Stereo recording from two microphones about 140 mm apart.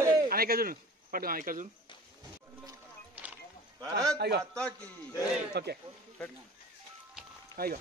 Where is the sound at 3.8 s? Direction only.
10° left (ahead or behind).